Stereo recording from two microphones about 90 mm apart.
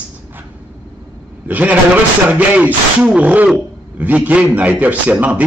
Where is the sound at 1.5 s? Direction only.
15° right (ahead or behind).